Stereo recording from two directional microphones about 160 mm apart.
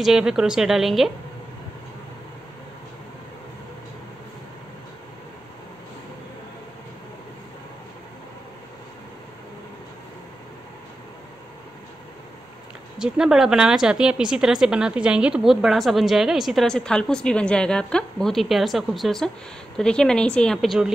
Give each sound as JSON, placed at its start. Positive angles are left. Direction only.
{"t": 0.0, "sound": "speech", "side_deg": -5}
{"t": 13.0, "sound": "speech", "side_deg": -5}